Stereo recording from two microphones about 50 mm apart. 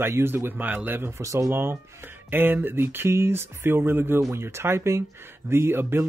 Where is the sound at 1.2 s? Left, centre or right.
Right.